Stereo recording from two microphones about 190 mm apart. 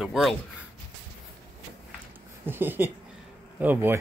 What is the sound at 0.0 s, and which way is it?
Speech, centre (ahead or behind).